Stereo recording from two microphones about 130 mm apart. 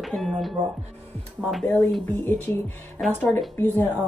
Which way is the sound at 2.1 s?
15° left (ahead or behind).